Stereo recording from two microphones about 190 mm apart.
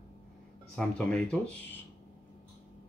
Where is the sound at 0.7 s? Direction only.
Centre (ahead or behind).